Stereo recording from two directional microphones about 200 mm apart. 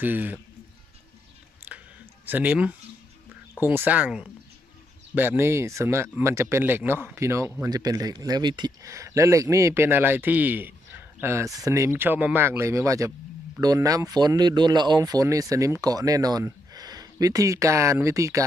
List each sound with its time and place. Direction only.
0.0 s speech: 10° right (ahead or behind)
2.2 s speech: 10° right (ahead or behind)